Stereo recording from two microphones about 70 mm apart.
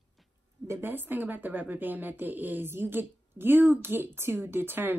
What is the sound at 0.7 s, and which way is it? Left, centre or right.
A woman's voice, right.